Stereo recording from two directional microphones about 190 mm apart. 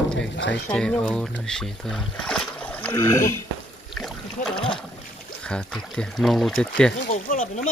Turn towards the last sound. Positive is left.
turn(degrees=40)  # may be behind; listen again after turning